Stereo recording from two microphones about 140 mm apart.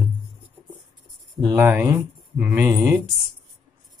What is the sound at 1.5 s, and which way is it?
Speech, 15° right (ahead or behind).